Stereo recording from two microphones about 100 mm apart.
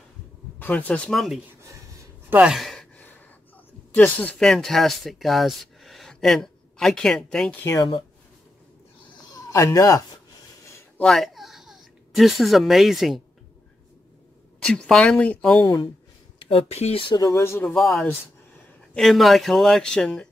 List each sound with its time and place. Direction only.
0.6 s speech: 15° left (ahead or behind)
2.2 s speech: 15° right (ahead or behind)
2.5 s sigh: 5° left (ahead or behind)
3.9 s speech: 15° left (ahead or behind)
4.4 s speech: 5° left (ahead or behind)
9.3 s speech: 30° left (ahead or behind)
11.0 s speech: 5° left (ahead or behind)
14.6 s speech: 5° left (ahead or behind)
16.3 s speech: 65° left (ahead or behind)
17.1 s speech: 30° left (ahead or behind)
17.7 s speech: 5° left (ahead or behind)